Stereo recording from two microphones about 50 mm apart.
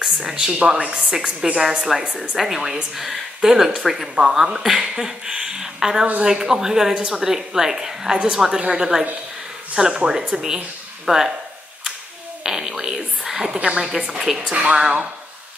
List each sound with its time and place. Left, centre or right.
0.0 s a sound: centre
0.4 s speech: centre
12.4 s a sound: centre
13.5 s speech: centre
14.1 s speech: centre
14.5 s a woman's voice: right